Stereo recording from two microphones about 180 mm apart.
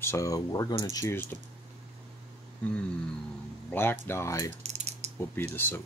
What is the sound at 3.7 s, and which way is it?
Speech, 10° left (ahead or behind).